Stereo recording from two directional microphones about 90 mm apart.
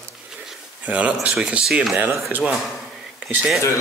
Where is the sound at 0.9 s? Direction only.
15° right (ahead or behind).